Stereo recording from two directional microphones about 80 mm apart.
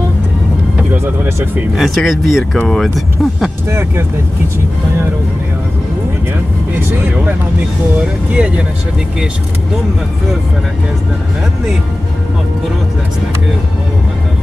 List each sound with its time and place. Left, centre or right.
0.9 s speech: right
1.8 s speech: centre
6.8 s speech: right
8.4 s speech: centre